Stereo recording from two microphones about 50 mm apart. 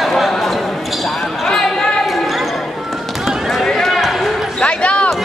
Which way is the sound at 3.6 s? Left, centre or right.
Centre.